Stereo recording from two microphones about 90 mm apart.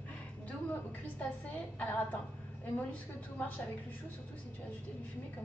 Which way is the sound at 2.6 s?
20° left (ahead or behind).